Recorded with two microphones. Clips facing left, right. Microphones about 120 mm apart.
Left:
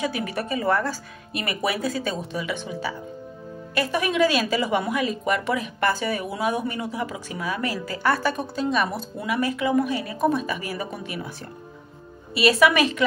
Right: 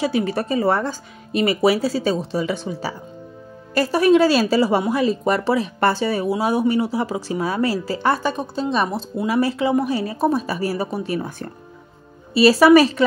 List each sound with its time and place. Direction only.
0.1 s speech: 35° right (ahead or behind)
12.4 s speech: 30° right (ahead or behind)